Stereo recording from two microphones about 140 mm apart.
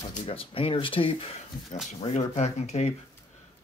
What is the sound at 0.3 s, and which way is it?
Speech, 40° left (ahead or behind).